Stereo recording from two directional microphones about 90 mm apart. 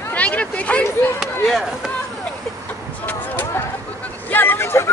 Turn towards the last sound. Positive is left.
turn(degrees=25)  # may be behind; listen again after turning